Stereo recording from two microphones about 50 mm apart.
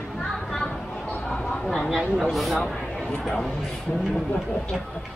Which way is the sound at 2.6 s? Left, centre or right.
Centre.